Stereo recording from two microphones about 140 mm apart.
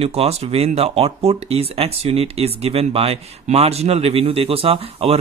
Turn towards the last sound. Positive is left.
turn(degrees=-45)  # may be behind; listen again after turning